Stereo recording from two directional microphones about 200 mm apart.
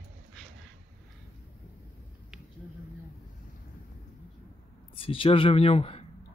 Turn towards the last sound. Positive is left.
turn(degrees=30)  # may be behind; listen again after turning